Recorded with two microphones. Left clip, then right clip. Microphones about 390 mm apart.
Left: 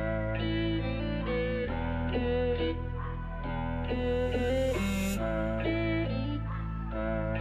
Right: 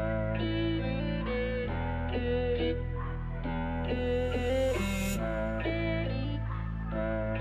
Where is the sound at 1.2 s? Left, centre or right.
Right.